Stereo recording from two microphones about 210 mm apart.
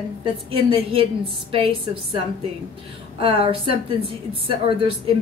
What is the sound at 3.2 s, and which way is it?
A woman's voice, 25° right (ahead or behind).